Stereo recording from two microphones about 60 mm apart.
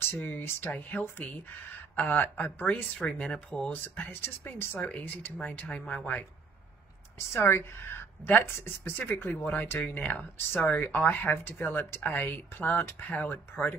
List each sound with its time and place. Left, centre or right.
0.0 s speech: left
4.2 s speech: left
4.7 s speech: left
7.3 s speech: left